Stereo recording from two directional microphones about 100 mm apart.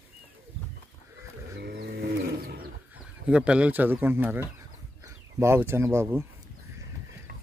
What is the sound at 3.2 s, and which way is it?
Speech, 10° right (ahead or behind).